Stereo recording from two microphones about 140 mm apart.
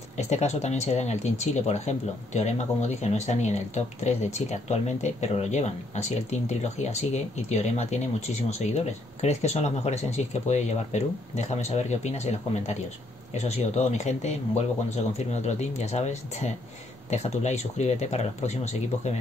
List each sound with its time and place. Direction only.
0.2 s speech: 50° left (ahead or behind)